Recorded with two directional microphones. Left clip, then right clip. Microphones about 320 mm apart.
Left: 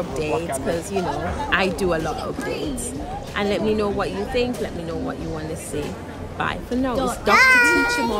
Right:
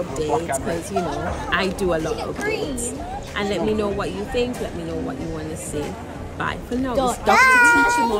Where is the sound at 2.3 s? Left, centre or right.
Right.